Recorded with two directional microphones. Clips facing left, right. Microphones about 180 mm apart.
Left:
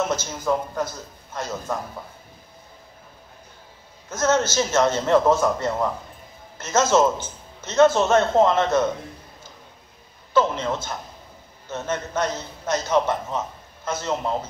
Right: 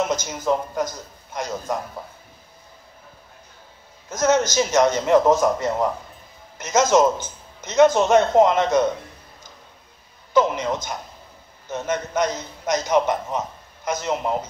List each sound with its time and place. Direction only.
0.1 s a man's voice: 15° right (ahead or behind)
4.1 s a man's voice: 15° right (ahead or behind)
10.3 s a man's voice: 15° right (ahead or behind)